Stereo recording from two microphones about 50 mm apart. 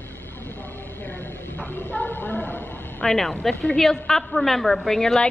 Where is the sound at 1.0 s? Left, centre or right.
Left.